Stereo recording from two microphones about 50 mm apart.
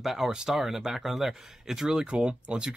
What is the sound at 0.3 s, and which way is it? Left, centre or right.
Speech, centre.